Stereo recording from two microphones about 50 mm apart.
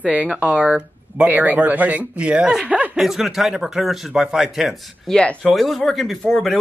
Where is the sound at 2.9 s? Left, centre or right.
Centre.